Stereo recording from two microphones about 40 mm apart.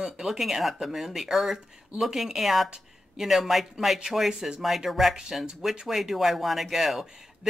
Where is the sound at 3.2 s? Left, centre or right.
Centre.